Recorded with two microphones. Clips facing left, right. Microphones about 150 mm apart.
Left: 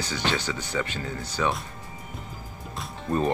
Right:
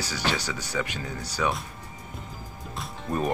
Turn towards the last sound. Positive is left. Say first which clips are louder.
# left 2 dB
turn(degrees=0)  # may be behind; listen again after turning